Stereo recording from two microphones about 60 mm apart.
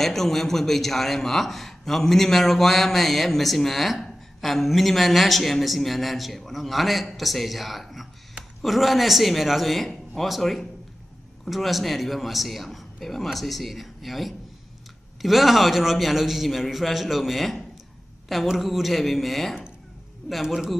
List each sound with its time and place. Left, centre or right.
0.0 s a man's voice: centre